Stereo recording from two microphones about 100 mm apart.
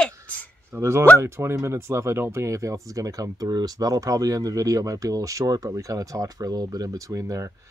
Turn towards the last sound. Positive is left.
turn(degrees=-35)  # may be behind; listen again after turning